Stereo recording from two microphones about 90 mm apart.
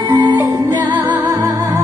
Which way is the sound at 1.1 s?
35° right (ahead or behind).